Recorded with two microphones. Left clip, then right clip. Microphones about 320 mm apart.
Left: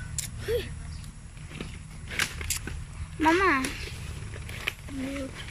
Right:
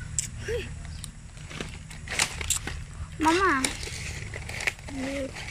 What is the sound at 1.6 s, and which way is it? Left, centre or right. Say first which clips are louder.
Vehicle: right 4 dB; right.